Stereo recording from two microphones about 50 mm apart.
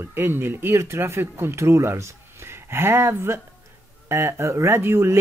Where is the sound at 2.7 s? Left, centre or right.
Right.